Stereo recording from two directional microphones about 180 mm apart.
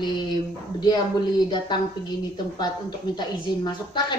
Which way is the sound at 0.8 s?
25° left (ahead or behind).